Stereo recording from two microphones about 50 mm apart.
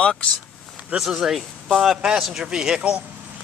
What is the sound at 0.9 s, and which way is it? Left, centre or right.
Speech, centre.